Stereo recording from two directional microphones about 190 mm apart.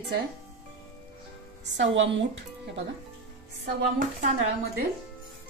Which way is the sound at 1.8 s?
75° right (ahead or behind).